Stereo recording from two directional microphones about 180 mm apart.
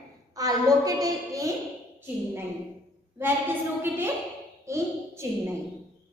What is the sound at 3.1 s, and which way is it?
A woman's voice, 10° right (ahead or behind).